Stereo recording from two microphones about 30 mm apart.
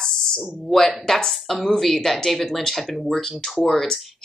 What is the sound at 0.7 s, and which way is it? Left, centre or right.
Speech, centre.